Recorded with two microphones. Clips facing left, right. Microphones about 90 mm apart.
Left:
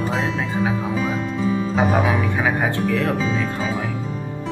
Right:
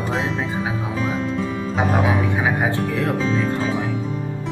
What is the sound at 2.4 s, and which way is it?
Speech, 20° right (ahead or behind).